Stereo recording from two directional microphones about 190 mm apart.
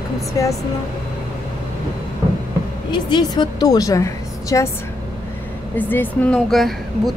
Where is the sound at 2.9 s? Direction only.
25° left (ahead or behind).